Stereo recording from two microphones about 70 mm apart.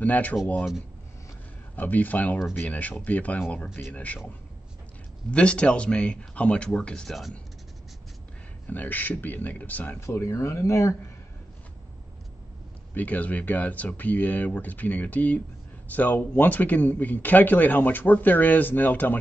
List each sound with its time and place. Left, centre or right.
0.0 s speech: left
1.8 s speech: left
5.3 s speech: centre
8.6 s speech: left
9.9 s speech: left
12.9 s speech: left